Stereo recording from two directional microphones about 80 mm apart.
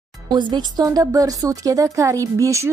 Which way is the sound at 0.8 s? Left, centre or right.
Right.